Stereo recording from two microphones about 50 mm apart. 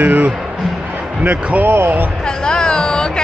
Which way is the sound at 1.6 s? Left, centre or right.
Right.